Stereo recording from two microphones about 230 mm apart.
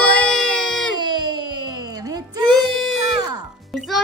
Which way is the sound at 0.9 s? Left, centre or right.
Centre.